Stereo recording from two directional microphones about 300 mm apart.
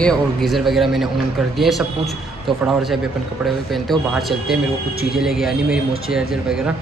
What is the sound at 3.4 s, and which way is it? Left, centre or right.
A man's voice, centre.